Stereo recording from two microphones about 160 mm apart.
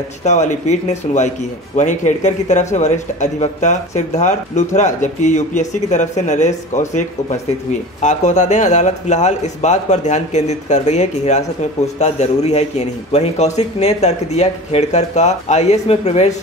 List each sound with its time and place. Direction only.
0.2 s speech: 45° left (ahead or behind)